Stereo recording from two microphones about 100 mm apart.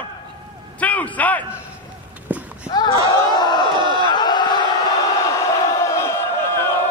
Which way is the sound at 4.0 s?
50° left (ahead or behind).